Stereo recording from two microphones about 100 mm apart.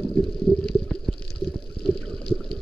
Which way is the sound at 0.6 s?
10° left (ahead or behind).